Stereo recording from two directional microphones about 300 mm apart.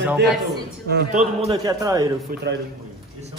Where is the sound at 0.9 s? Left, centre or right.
Right.